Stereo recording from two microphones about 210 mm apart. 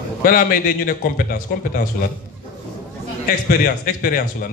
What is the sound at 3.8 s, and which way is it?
Speech, 45° left (ahead or behind).